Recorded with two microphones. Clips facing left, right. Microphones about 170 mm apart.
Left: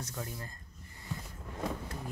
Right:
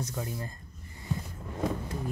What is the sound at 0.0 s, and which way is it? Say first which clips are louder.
Speech: right 5 dB; 20° right (ahead or behind).